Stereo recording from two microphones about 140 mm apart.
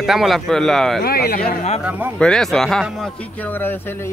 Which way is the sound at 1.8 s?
10° right (ahead or behind).